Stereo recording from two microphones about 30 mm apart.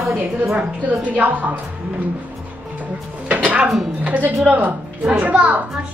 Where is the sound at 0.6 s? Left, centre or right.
Right.